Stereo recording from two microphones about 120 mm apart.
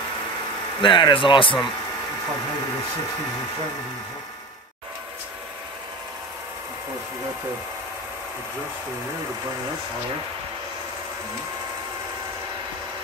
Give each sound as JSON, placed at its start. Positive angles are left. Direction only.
{"t": 0.7, "sound": "speech", "side_deg": 45}